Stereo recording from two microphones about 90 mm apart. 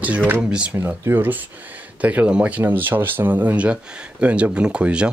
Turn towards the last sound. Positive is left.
turn(degrees=-10)  # may be behind; listen again after turning